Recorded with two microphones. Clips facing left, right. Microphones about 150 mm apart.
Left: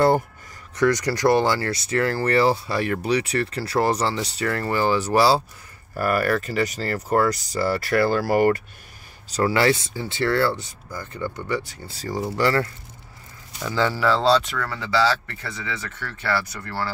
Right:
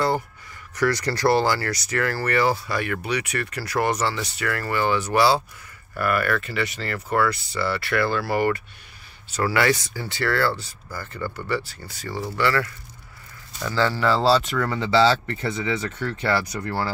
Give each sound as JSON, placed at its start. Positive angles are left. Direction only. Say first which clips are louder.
{"t": 0.7, "sound": "speech", "louder": "left 3 dB", "side_deg": 20}
{"t": 9.3, "sound": "speech", "louder": "left 2 dB", "side_deg": 30}
{"t": 11.9, "sound": "speech", "louder": "left 3 dB", "side_deg": 35}
{"t": 13.6, "sound": "speech", "louder": "even", "side_deg": 15}
{"t": 13.9, "sound": "speech", "louder": "left 1 dB", "side_deg": 0}
{"t": 14.6, "sound": "speech", "louder": "right 3 dB", "side_deg": -20}